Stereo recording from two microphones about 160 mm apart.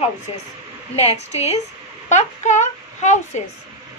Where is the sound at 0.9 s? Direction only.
40° left (ahead or behind).